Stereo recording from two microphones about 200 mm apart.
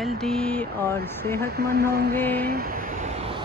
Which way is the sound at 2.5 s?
45° right (ahead or behind).